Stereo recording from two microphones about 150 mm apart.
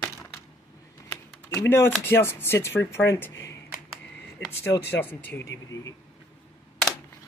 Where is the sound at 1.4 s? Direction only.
15° left (ahead or behind).